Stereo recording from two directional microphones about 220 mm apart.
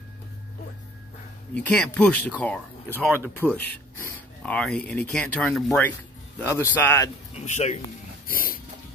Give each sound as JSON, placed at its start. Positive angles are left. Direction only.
{"t": 1.5, "sound": "speech", "side_deg": 5}
{"t": 7.3, "sound": "speech", "side_deg": 30}